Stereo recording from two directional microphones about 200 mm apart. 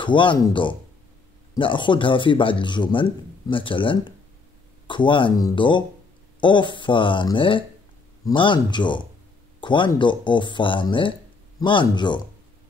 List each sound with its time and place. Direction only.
0.0 s a man's voice: 25° left (ahead or behind)